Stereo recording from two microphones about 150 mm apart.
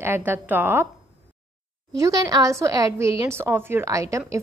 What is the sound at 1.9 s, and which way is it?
A woman's voice, 20° right (ahead or behind).